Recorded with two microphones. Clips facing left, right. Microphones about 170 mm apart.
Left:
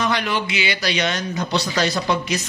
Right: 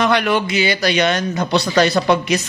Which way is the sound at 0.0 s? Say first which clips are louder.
Right 6 dB; 60° right (ahead or behind).